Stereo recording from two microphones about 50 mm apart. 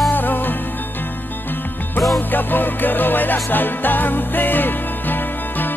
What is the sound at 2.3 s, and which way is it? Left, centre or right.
Music, left.